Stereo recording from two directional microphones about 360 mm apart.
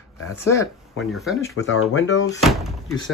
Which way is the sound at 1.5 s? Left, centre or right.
Left.